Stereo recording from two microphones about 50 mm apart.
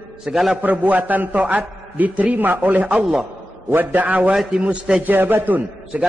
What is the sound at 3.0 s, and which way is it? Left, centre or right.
Speech, centre.